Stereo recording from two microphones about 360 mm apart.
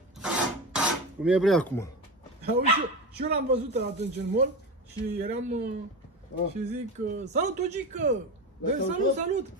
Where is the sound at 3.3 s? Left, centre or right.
Right.